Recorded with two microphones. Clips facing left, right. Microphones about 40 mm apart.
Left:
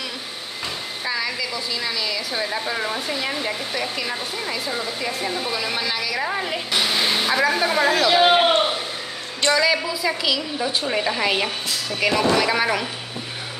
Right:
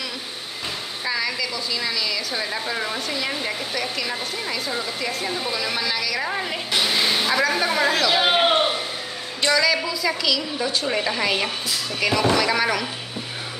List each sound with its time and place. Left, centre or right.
1.0 s a woman's voice: centre
9.5 s a woman's voice: centre
10.9 s a woman's voice: centre